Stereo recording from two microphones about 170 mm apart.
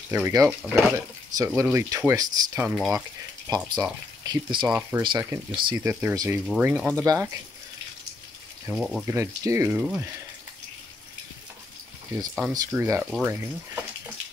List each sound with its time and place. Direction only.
0.1 s speech: 15° right (ahead or behind)
2.6 s speech: 5° right (ahead or behind)
3.4 s speech: 20° right (ahead or behind)
4.6 s speech: 10° right (ahead or behind)
5.0 s speech: 25° right (ahead or behind)
5.9 s speech: 10° right (ahead or behind)
6.4 s speech: centre (ahead or behind)
7.1 s speech: 20° right (ahead or behind)
8.6 s speech: centre (ahead or behind)
9.0 s speech: 15° right (ahead or behind)
12.5 s speech: 15° right (ahead or behind)